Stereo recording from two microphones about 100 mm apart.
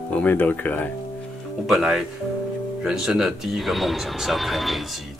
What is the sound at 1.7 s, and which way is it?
Speech, centre (ahead or behind).